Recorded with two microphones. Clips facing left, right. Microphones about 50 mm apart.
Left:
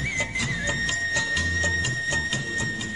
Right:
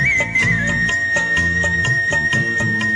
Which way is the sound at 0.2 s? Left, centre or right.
Right.